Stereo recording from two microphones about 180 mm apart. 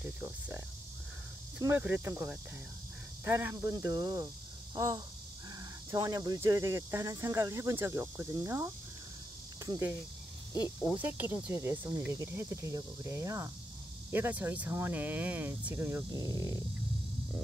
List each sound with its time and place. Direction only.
0.0 s speech: 10° right (ahead or behind)
1.6 s speech: 10° right (ahead or behind)
4.7 s crow: 20° right (ahead or behind)
5.9 s speech: 15° right (ahead or behind)
11.0 s speech: 10° right (ahead or behind)
16.1 s speech: 20° left (ahead or behind)